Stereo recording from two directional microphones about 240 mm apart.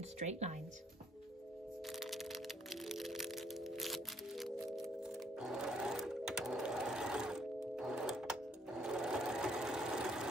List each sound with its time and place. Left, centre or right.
0.2 s speech: right
1.9 s music: centre